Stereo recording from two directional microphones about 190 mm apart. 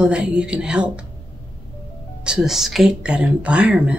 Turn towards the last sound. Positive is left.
turn(degrees=-5)  # may be behind; listen again after turning